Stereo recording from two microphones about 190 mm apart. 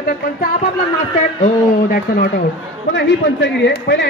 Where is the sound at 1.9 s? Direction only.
50° left (ahead or behind).